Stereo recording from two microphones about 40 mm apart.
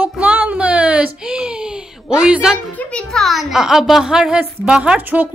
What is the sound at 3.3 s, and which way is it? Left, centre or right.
A child's voice, centre.